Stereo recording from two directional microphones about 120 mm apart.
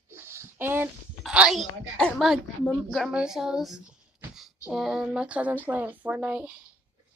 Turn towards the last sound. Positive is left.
turn(degrees=-10)  # may be behind; listen again after turning